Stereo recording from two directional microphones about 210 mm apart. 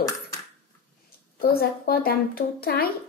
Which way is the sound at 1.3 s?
45° left (ahead or behind).